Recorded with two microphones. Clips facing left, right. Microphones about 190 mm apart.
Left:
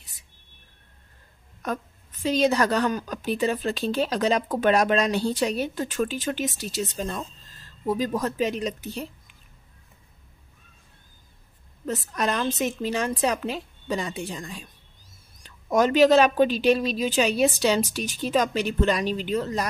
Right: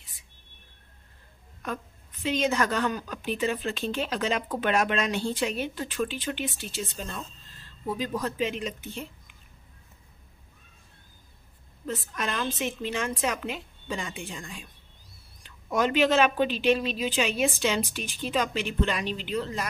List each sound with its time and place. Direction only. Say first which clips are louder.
2.2 s a woman's voice: left 4 dB; 35° left (ahead or behind)
11.9 s a woman's voice: left 5 dB; 40° left (ahead or behind)